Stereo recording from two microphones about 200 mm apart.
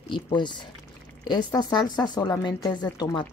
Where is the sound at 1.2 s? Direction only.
20° left (ahead or behind).